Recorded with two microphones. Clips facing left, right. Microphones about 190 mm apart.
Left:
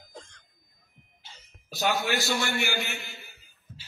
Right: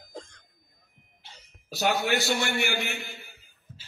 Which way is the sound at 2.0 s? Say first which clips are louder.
Right 2 dB; 60° right (ahead or behind).